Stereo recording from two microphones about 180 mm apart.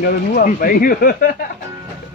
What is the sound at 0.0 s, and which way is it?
Speech, 55° left (ahead or behind).